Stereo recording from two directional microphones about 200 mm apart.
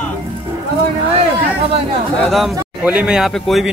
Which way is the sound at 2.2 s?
Centre (ahead or behind).